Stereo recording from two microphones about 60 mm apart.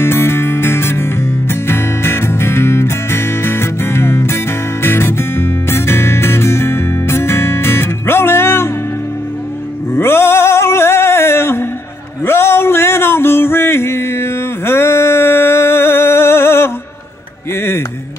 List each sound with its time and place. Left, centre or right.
0.0 s music: left
9.9 s a sound: left
12.3 s male singing: left
17.6 s music: left